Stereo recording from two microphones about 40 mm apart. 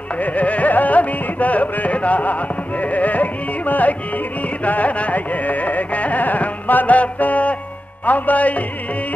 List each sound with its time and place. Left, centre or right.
0.2 s music: left